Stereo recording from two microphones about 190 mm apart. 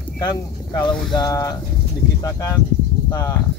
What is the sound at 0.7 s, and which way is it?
Speech, 25° left (ahead or behind).